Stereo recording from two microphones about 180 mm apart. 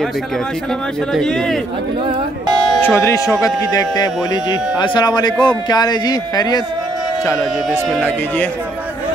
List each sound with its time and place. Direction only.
1.1 s speech: 5° left (ahead or behind)
2.8 s speech: 15° left (ahead or behind)
7.3 s speech: 5° right (ahead or behind)